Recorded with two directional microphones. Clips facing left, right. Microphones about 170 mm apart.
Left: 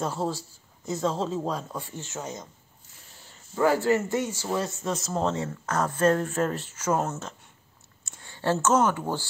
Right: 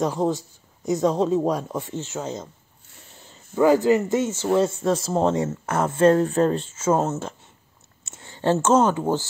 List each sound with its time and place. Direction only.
0.0 s speech: 15° right (ahead or behind)
3.5 s speech: 20° right (ahead or behind)
8.2 s a sound: 20° right (ahead or behind)
8.9 s speech: 20° right (ahead or behind)